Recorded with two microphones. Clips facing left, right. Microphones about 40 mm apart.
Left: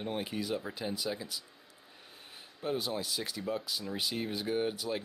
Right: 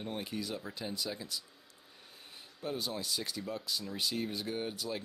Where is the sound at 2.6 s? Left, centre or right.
Centre.